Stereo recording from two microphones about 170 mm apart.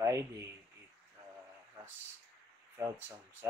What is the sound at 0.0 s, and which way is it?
Speech, 15° right (ahead or behind).